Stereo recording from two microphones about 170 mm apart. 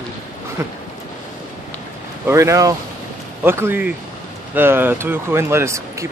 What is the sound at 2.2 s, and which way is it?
Speech, 15° right (ahead or behind).